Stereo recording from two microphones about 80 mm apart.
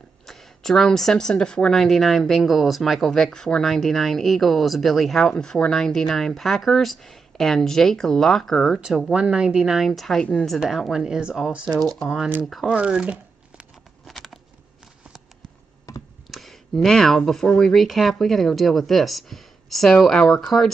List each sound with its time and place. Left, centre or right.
0.3 s speech: centre
9.1 s speech: centre
14.0 s a sound: centre
15.9 s computer keyboard: left
16.3 s a sound: centre
17.5 s speech: centre